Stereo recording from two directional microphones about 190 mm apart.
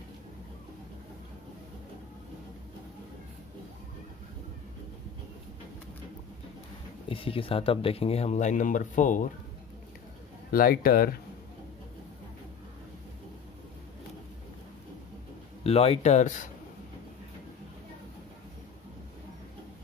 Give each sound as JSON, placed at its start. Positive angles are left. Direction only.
{"t": 7.1, "sound": "speech", "side_deg": 30}
{"t": 10.5, "sound": "speech", "side_deg": 50}
{"t": 15.6, "sound": "speech", "side_deg": 30}